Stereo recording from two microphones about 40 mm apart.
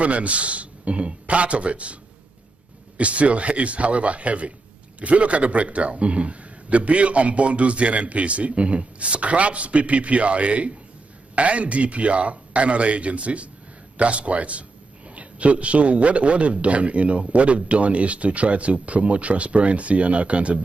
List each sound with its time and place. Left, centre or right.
0.0 s a man's voice: right
3.0 s a man's voice: right